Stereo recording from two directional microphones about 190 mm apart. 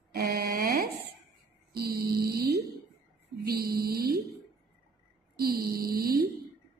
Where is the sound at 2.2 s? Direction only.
55° right (ahead or behind).